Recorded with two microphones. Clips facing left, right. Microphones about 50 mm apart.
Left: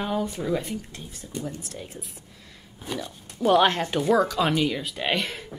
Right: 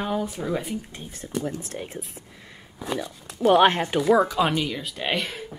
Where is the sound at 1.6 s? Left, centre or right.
Right.